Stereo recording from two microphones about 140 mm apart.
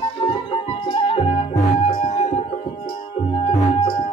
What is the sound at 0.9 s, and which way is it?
Music, 45° left (ahead or behind).